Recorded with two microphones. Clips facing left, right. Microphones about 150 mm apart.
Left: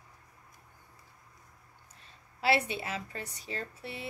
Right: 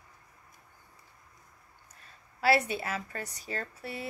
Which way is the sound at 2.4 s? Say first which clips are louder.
Right 2 dB; 40° right (ahead or behind).